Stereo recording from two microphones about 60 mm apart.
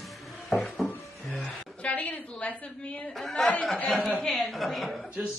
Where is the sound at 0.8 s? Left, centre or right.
Centre.